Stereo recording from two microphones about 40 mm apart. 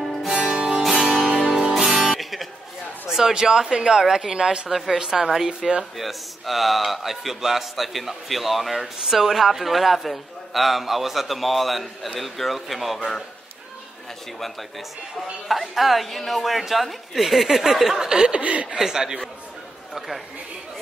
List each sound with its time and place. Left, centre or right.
0.0 s music: centre
0.3 s music: right
0.7 s music: centre
1.0 s music: right
1.5 s music: centre
1.9 s music: right
3.1 s speech: centre
5.9 s speech: centre
15.4 s speech: centre
17.9 s speech: centre
18.4 s speech: right
18.8 s speech: centre